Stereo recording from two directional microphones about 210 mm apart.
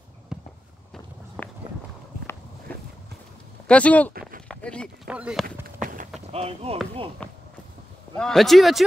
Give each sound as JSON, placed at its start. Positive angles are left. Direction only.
{"t": 0.3, "sound": "walk", "side_deg": -5}
{"t": 1.4, "sound": "run", "side_deg": 5}
{"t": 2.7, "sound": "a sound", "side_deg": 10}
{"t": 3.6, "sound": "speech", "side_deg": 5}
{"t": 4.5, "sound": "a sound", "side_deg": 5}
{"t": 5.1, "sound": "speech", "side_deg": -5}
{"t": 5.8, "sound": "run", "side_deg": -40}
{"t": 6.2, "sound": "speech", "side_deg": -30}
{"t": 8.2, "sound": "speech", "side_deg": 0}